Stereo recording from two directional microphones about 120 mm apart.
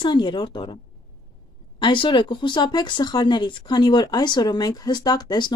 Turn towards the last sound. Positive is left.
turn(degrees=35)  # may be behind; listen again after turning